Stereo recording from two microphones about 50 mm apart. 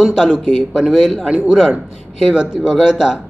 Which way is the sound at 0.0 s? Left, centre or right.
Centre.